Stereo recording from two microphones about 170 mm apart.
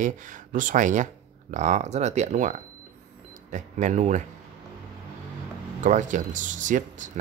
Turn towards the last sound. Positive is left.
turn(degrees=-50)  # may be behind; listen again after turning